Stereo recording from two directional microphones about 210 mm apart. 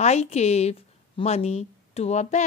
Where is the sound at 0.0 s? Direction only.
30° left (ahead or behind).